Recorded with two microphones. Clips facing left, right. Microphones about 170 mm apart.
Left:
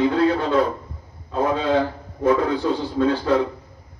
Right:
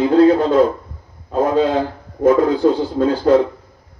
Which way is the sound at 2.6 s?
50° right (ahead or behind).